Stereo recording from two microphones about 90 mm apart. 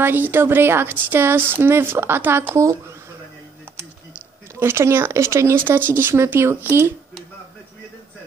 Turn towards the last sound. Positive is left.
turn(degrees=-25)  # may be behind; listen again after turning